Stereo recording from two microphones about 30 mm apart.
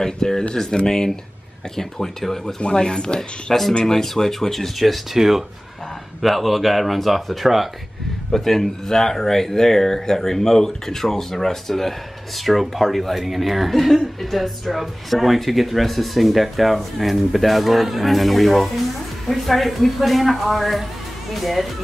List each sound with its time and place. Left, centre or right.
0.0 s speech: centre
2.6 s speech: left
3.5 s speech: centre
5.1 s speech: centre
8.3 s speech: centre